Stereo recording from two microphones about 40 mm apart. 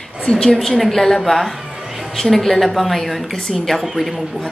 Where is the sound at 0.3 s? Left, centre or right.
Centre.